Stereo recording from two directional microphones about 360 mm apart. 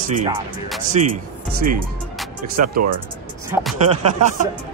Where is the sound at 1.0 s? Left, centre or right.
Centre.